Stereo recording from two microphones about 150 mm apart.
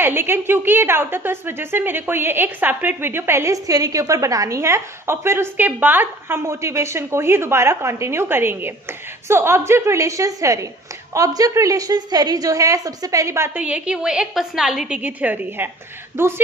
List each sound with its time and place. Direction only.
0.0 s a woman's voice: 15° right (ahead or behind)